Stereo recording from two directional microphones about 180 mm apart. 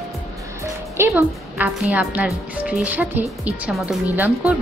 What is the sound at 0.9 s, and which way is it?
A woman's voice, 5° right (ahead or behind).